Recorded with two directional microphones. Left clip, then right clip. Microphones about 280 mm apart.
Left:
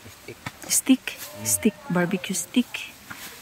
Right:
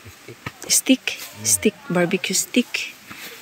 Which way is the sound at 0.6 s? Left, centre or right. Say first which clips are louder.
Right 4 dB; centre.